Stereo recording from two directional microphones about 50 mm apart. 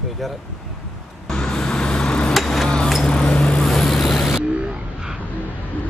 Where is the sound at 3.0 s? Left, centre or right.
Centre.